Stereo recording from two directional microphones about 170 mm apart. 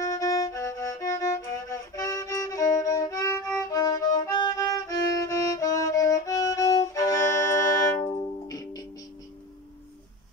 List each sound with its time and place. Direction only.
0.0 s music: 20° left (ahead or behind)